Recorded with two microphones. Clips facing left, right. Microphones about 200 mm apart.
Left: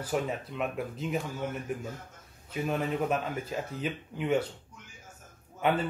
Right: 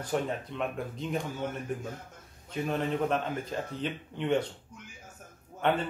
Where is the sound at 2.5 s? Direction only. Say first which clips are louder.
Even; 5° left (ahead or behind).